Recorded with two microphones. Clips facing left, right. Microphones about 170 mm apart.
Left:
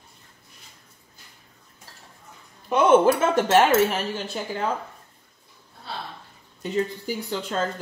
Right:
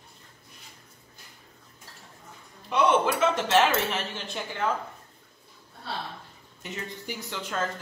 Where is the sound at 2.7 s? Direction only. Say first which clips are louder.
Left 6 dB; 50° left (ahead or behind).